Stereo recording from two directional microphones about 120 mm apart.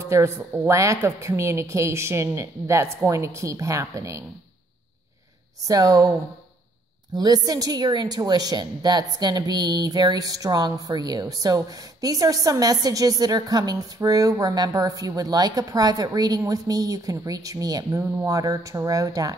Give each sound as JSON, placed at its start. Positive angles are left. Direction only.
{"t": 0.0, "sound": "a woman's voice", "side_deg": -25}
{"t": 5.7, "sound": "a woman's voice", "side_deg": -30}
{"t": 7.2, "sound": "a woman's voice", "side_deg": -35}